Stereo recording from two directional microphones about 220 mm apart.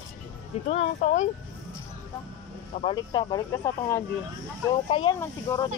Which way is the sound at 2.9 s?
15° left (ahead or behind).